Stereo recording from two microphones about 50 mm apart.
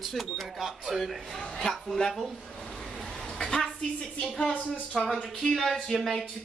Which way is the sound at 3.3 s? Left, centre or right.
Centre.